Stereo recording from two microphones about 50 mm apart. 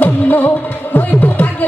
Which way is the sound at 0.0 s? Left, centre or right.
Left.